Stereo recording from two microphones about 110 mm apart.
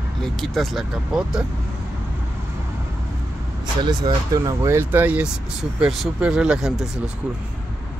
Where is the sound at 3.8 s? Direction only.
35° right (ahead or behind); by 6.9 s 5° right (ahead or behind).